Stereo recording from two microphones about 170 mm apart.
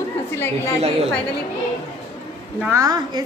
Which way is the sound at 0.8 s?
35° right (ahead or behind).